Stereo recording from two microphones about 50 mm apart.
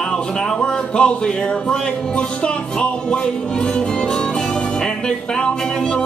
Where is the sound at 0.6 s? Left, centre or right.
Centre.